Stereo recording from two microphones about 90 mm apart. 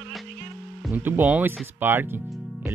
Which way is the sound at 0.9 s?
20° right (ahead or behind).